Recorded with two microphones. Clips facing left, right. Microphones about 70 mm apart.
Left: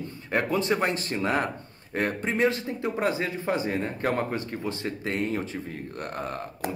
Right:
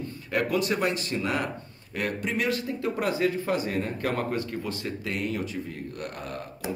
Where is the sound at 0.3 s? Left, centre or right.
Left.